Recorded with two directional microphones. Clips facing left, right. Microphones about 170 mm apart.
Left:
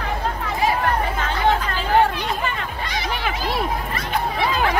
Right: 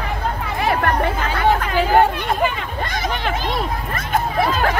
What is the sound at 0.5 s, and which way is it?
Chatter, 65° right (ahead or behind).